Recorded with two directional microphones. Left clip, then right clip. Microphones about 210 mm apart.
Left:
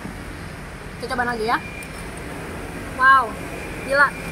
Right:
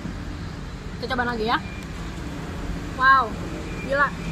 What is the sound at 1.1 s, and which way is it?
Speech, 5° left (ahead or behind).